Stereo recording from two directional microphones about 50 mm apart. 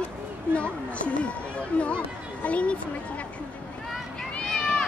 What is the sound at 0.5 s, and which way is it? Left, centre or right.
Speech, left.